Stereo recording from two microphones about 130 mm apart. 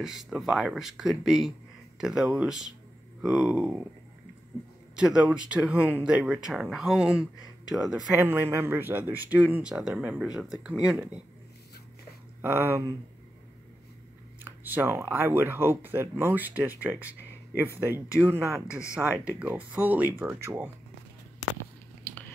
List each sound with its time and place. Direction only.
0.0 s speech: 5° right (ahead or behind)
4.9 s speech: 5° right (ahead or behind)
8.2 s speech: 20° right (ahead or behind)
12.4 s speech: 20° right (ahead or behind)
14.4 s speech: 15° right (ahead or behind)